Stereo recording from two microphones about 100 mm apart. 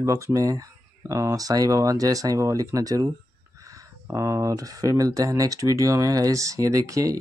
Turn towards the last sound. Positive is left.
turn(degrees=-35)  # may be behind; listen again after turning